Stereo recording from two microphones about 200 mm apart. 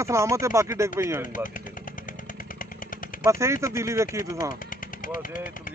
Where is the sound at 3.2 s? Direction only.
15° right (ahead or behind).